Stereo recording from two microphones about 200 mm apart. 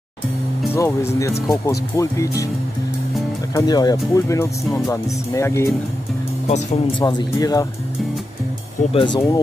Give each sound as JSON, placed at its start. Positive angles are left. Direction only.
{"t": 0.7, "sound": "speech", "side_deg": 15}
{"t": 3.5, "sound": "speech", "side_deg": 20}
{"t": 6.4, "sound": "speech", "side_deg": 25}
{"t": 8.9, "sound": "speech", "side_deg": 25}